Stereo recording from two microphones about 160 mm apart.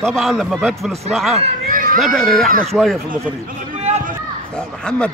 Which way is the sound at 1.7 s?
60° right (ahead or behind).